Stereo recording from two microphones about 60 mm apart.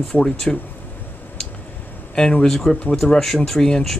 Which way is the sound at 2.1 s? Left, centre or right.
Centre.